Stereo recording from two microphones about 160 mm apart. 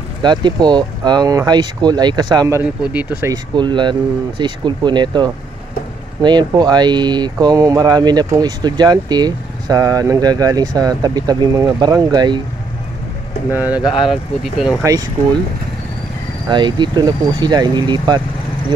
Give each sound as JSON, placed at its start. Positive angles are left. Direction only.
{"t": 0.2, "sound": "speech", "side_deg": -25}
{"t": 2.8, "sound": "speech", "side_deg": -10}
{"t": 3.2, "sound": "speech", "side_deg": -25}
{"t": 13.5, "sound": "speech", "side_deg": -10}
{"t": 16.4, "sound": "speech", "side_deg": -30}